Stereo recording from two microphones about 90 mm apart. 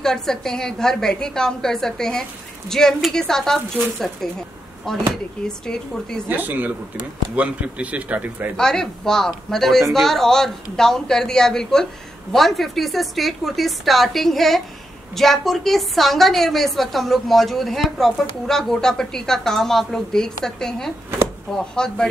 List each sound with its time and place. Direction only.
0.0 s a woman's voice: 5° left (ahead or behind)
6.2 s a man's voice: 20° right (ahead or behind)
8.5 s a woman's voice: 5° left (ahead or behind)